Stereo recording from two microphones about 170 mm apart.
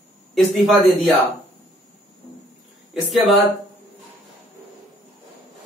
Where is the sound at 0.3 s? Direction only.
Centre (ahead or behind).